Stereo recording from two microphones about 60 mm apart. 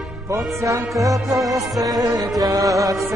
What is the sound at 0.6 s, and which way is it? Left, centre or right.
Music, right.